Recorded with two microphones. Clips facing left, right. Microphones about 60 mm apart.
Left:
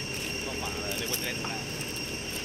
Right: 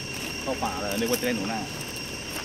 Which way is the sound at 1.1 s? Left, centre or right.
Right.